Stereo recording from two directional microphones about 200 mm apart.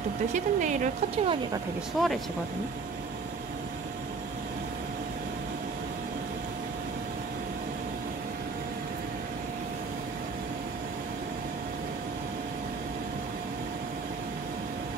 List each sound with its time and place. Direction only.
0.3 s speech: 40° right (ahead or behind)
2.0 s speech: centre (ahead or behind)